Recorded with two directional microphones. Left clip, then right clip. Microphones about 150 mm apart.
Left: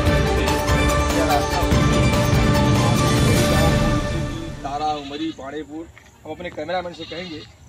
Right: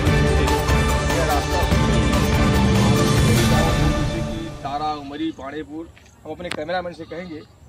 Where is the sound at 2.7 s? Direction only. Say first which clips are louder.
Even; centre (ahead or behind).